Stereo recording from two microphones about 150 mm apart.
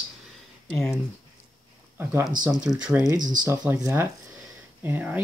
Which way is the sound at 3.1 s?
60° right (ahead or behind).